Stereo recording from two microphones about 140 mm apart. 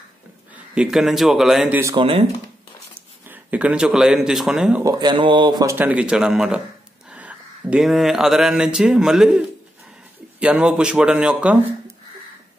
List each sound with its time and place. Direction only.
0.7 s speech: 5° right (ahead or behind)
2.0 s speech: 40° right (ahead or behind)
3.3 s speech: 10° right (ahead or behind)
4.8 s speech: 30° right (ahead or behind)
5.8 s speech: 10° right (ahead or behind)
7.1 s a sound: 10° right (ahead or behind)
10.4 s speech: 5° right (ahead or behind)